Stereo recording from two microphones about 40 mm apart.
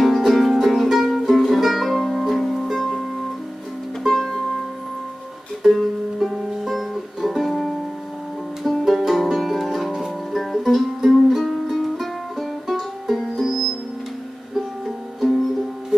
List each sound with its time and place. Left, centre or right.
0.0 s music: centre
5.6 s music: centre
11.0 s music: centre
11.3 s music: centre
15.9 s music: centre